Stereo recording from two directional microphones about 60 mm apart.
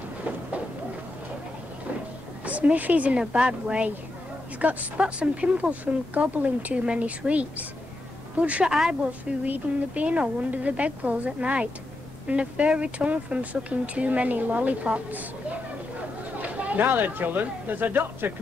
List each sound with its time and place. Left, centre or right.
2.4 s speech: right
16.3 s speech: right